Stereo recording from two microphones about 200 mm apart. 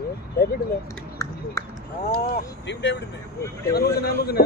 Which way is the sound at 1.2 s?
15° left (ahead or behind).